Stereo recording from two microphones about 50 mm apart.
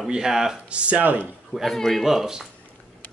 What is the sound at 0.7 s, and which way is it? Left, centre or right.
Speech, right.